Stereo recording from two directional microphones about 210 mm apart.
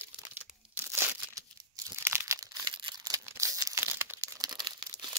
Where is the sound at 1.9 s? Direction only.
10° right (ahead or behind).